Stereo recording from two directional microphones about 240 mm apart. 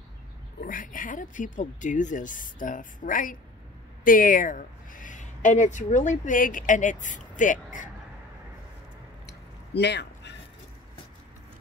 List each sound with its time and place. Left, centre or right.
0.7 s speech: left
9.8 s speech: left